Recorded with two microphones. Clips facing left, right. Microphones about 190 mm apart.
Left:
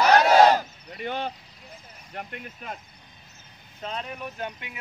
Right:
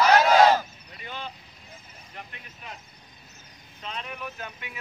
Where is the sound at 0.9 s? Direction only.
55° left (ahead or behind).